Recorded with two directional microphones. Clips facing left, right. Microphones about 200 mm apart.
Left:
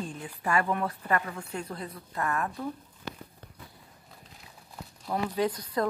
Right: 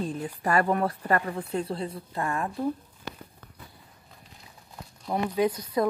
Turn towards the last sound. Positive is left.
turn(degrees=-10)  # may be behind; listen again after turning